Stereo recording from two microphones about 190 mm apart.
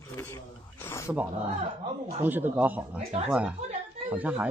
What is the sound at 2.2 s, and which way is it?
Speech, 10° right (ahead or behind).